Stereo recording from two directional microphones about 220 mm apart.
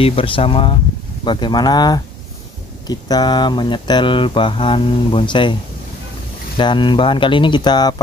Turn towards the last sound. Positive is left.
turn(degrees=20)  # may be behind; listen again after turning